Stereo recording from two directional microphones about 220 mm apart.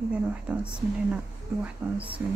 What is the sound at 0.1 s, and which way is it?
A woman's voice, 5° right (ahead or behind).